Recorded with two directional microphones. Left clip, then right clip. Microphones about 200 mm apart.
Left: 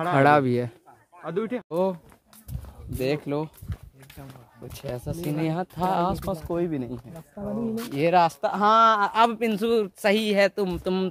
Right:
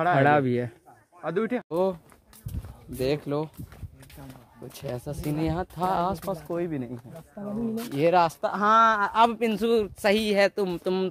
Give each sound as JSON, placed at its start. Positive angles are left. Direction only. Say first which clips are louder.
{"t": 0.2, "sound": "speech", "louder": "left 2 dB", "side_deg": 15}
{"t": 1.2, "sound": "speech", "louder": "right 1 dB", "side_deg": -40}
{"t": 1.7, "sound": "speech", "louder": "left 2 dB", "side_deg": -5}
{"t": 3.0, "sound": "speech", "louder": "even", "side_deg": 0}
{"t": 4.7, "sound": "speech", "louder": "left 1 dB", "side_deg": -10}
{"t": 7.9, "sound": "speech", "louder": "left 1 dB", "side_deg": -5}